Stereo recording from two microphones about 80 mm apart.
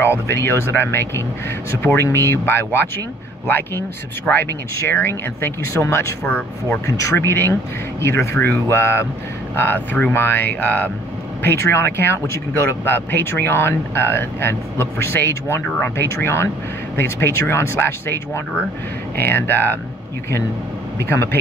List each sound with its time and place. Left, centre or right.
0.3 s speech: left
6.9 s speech: left